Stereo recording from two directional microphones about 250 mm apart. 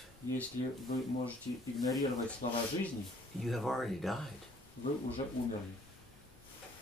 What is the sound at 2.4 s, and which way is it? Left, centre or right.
Speech, left.